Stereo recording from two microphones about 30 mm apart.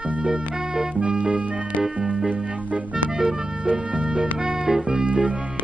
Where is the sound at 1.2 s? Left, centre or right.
Right.